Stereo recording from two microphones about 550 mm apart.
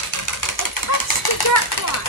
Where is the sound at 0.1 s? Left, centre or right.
Left.